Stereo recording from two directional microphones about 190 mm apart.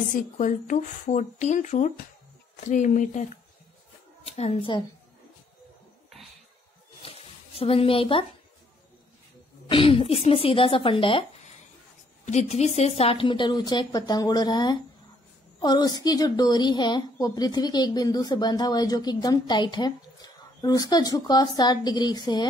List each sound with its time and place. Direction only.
0.1 s a woman's voice: 45° left (ahead or behind); by 4.8 s 25° left (ahead or behind)
7.0 s a sound: 30° left (ahead or behind)
9.7 s a woman's voice: 30° left (ahead or behind)
12.3 s a woman's voice: 35° left (ahead or behind)